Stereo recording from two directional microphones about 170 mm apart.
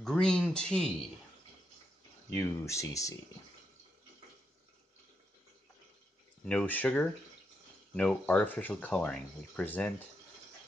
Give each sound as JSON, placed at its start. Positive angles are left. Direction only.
{"t": 0.0, "sound": "speech", "side_deg": 5}
{"t": 2.3, "sound": "speech", "side_deg": 15}
{"t": 6.4, "sound": "speech", "side_deg": 10}